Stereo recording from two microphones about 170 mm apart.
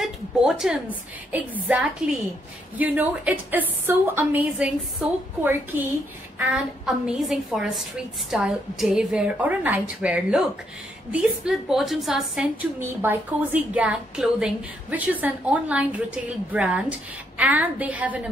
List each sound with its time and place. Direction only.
0.0 s a woman's voice: centre (ahead or behind)
7.1 s a woman's voice: centre (ahead or behind)